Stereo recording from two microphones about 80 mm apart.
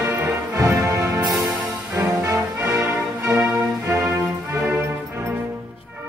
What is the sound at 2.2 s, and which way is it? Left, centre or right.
Music, right.